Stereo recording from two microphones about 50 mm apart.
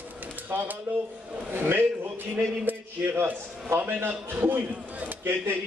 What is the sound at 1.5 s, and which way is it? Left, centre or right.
Speech, right.